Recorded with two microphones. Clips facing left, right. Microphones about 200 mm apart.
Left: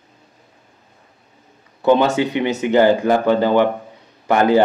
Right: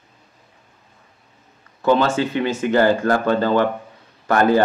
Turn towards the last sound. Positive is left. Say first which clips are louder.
# left 2 dB
turn(degrees=15)  # may be behind; listen again after turning